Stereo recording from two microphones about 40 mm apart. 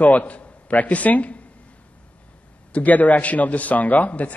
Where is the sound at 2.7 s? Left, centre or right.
Left.